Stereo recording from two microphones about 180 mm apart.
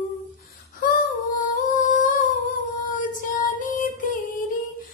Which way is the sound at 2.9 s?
45° left (ahead or behind).